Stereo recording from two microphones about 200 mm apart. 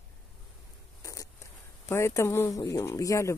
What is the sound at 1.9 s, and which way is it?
Speech, 15° left (ahead or behind).